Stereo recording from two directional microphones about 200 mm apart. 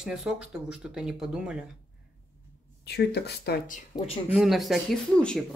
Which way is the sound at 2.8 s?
55° left (ahead or behind).